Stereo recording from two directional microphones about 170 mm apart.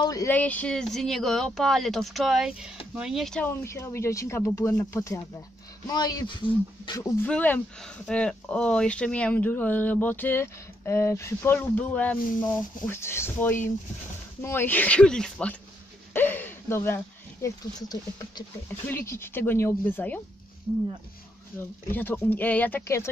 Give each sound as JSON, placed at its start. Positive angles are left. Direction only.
{"t": 0.0, "sound": "speech", "side_deg": 20}
{"t": 0.3, "sound": "speech", "side_deg": 10}
{"t": 7.0, "sound": "speech", "side_deg": 10}
{"t": 20.7, "sound": "speech", "side_deg": -5}
{"t": 21.9, "sound": "speech", "side_deg": 10}